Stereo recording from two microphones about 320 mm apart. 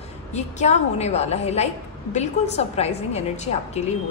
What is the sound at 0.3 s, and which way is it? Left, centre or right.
A woman's voice, left.